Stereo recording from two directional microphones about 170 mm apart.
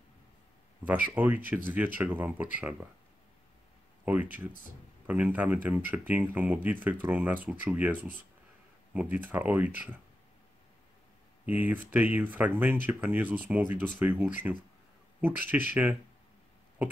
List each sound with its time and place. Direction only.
0.8 s speech: 10° right (ahead or behind)
4.0 s speech: 10° right (ahead or behind)
9.1 s speech: 10° right (ahead or behind)
11.4 s speech: 10° right (ahead or behind)